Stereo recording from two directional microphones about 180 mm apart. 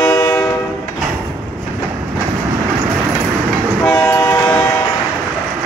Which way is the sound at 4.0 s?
15° left (ahead or behind).